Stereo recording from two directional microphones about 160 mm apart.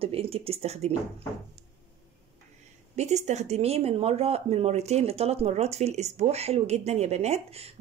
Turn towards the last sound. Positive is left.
turn(degrees=-40)  # may be behind; listen again after turning